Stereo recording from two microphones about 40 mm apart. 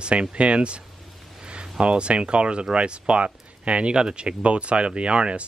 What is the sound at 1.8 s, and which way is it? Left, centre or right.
Speech, right.